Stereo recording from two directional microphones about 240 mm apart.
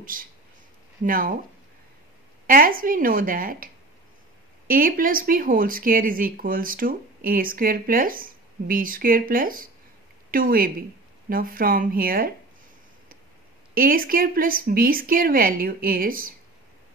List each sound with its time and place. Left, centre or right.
0.0 s speech: right
2.4 s speech: right
13.7 s speech: right